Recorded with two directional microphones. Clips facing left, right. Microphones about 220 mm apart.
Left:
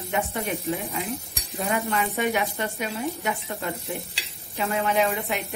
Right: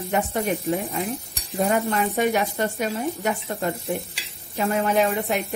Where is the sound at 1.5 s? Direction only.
40° right (ahead or behind).